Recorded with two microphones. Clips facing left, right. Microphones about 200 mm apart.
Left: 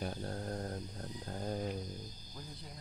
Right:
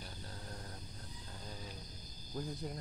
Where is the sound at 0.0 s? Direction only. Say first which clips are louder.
Left 11 dB; 60° left (ahead or behind).